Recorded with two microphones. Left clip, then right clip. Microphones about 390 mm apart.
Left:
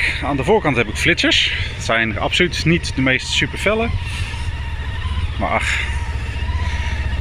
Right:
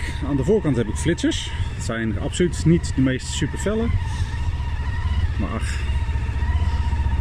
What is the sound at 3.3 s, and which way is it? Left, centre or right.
Speech, centre.